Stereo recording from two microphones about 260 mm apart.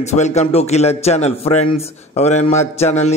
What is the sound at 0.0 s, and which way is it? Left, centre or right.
A man's voice, left.